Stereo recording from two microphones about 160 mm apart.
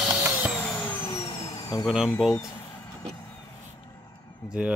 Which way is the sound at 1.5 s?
20° left (ahead or behind).